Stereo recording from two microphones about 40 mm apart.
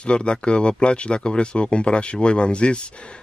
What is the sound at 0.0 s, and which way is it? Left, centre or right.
Speech, left.